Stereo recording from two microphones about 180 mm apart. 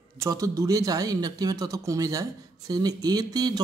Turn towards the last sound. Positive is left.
turn(degrees=-20)  # may be behind; listen again after turning